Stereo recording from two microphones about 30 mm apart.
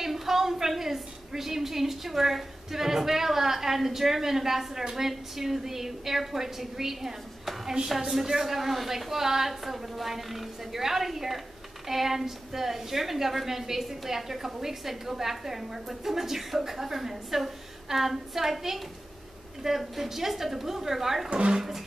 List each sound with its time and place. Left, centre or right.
0.0 s a woman's voice: centre
21.3 s speech: right